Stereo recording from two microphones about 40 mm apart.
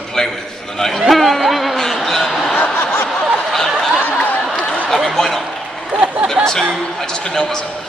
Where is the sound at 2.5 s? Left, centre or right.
Left.